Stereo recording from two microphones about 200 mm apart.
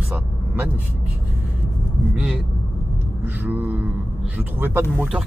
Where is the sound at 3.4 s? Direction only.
10° right (ahead or behind).